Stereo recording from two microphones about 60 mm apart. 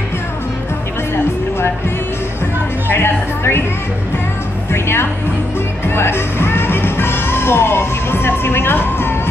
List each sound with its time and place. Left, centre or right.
2.9 s music: left
4.7 s music: left